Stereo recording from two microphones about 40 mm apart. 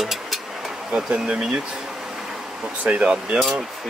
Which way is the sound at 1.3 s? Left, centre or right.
Centre.